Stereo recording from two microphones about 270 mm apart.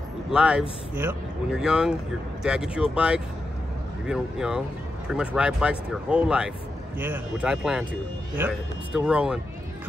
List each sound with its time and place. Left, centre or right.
0.3 s speech: centre